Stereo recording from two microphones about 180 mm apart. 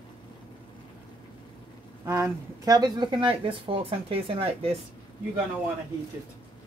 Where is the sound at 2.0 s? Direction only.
20° right (ahead or behind).